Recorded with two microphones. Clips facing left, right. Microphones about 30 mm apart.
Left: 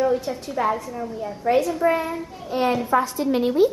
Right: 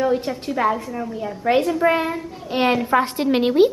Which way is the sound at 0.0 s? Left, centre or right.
Right.